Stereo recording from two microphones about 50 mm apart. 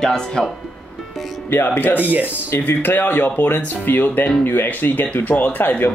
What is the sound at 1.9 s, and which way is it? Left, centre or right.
Speech, right.